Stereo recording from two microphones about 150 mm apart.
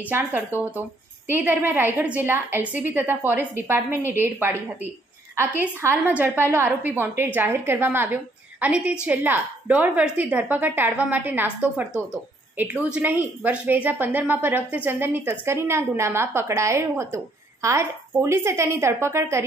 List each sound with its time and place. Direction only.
0.7 s a woman's voice: 15° right (ahead or behind)